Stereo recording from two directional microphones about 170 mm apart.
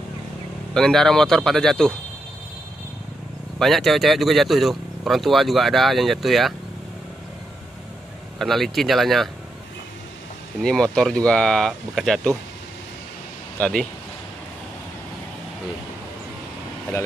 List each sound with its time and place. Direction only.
0.7 s speech: 5° left (ahead or behind)
3.5 s speech: centre (ahead or behind)
8.4 s speech: centre (ahead or behind)
10.6 s speech: 5° left (ahead or behind)
13.6 s speech: 5° left (ahead or behind)